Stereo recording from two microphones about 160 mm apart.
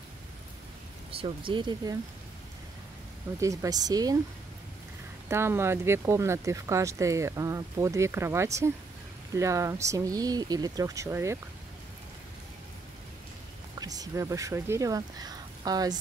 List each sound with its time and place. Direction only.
1.1 s speech: 30° right (ahead or behind)
3.3 s speech: 20° right (ahead or behind)
5.3 s speech: 15° right (ahead or behind)
13.7 s speech: 25° right (ahead or behind)